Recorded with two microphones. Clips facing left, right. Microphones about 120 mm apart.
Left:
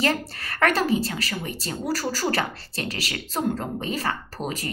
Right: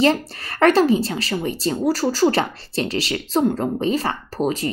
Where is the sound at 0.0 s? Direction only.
25° right (ahead or behind).